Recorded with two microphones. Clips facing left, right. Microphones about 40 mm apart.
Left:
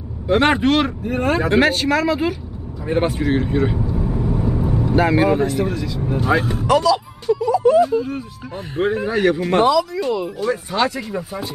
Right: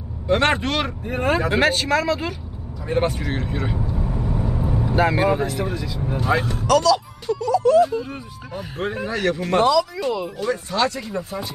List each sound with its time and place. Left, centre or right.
0.3 s speech: centre
7.8 s speech: centre